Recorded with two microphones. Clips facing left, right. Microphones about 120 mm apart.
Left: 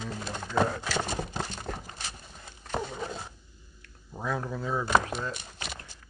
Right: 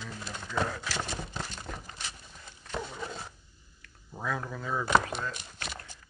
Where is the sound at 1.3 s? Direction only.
40° left (ahead or behind).